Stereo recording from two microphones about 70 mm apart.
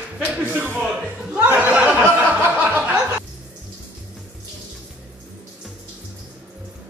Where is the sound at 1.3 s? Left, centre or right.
Right.